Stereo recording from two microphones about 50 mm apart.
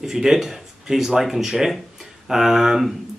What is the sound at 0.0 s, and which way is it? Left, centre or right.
Speech, centre.